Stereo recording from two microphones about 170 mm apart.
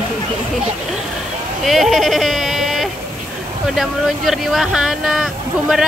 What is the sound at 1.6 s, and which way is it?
Speech, centre (ahead or behind).